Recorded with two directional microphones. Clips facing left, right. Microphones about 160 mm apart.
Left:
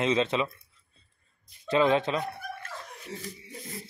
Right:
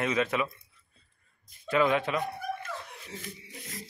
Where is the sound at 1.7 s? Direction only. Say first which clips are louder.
Left 2 dB; 25° left (ahead or behind).